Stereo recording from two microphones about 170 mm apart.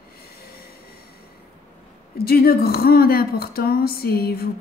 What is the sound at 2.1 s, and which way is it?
A woman's voice, 65° left (ahead or behind).